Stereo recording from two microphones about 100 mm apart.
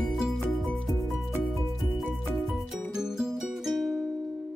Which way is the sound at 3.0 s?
5° right (ahead or behind).